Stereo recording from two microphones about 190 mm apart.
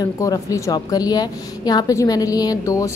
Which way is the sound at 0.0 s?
20° left (ahead or behind).